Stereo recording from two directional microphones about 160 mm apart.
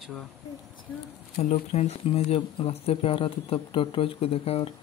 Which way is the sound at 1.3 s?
45° left (ahead or behind).